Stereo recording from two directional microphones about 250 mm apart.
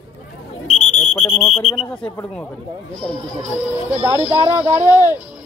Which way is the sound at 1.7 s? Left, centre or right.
Centre.